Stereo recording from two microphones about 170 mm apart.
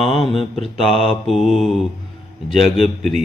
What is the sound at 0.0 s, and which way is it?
Mantra, 30° left (ahead or behind).